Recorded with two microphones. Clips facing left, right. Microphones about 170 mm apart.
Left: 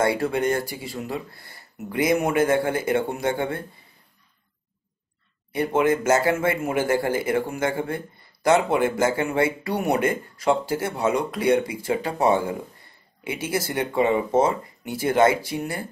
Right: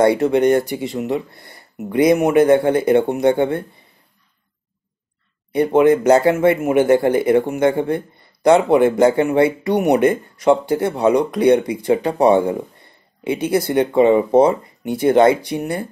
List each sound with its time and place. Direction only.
0.0 s speech: 20° right (ahead or behind)
5.5 s speech: 20° right (ahead or behind)